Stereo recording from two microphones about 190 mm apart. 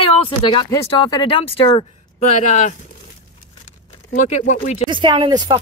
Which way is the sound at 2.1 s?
40° left (ahead or behind).